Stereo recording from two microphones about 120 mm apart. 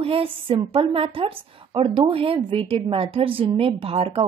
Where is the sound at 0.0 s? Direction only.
50° right (ahead or behind).